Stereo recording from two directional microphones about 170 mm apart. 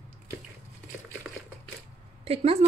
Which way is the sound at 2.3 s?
35° right (ahead or behind).